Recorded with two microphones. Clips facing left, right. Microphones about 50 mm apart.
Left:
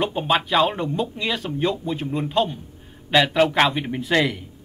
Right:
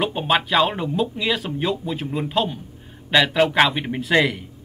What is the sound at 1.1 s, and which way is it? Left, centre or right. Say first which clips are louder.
Speech: right 2 dB; centre.